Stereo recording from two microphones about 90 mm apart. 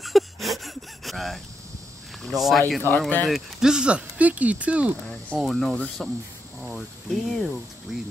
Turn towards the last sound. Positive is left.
turn(degrees=0)  # may be behind; listen again after turning